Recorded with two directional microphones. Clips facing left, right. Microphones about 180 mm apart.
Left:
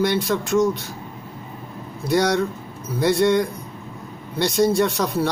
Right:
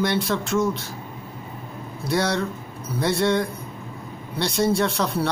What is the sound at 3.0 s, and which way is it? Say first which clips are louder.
Speech: left 4 dB; centre (ahead or behind).